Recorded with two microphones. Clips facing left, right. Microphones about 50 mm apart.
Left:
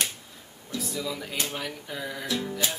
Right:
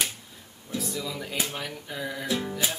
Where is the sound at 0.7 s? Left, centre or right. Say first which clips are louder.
Even; centre.